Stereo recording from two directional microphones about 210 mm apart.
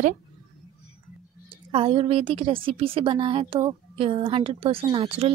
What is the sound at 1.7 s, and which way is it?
Speech, 25° right (ahead or behind).